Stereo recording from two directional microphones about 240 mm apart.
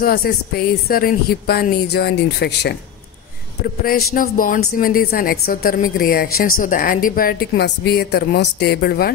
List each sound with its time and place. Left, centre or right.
0.0 s speech: left